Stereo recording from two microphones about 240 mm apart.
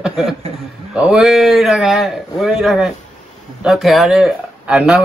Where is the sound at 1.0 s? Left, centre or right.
Centre.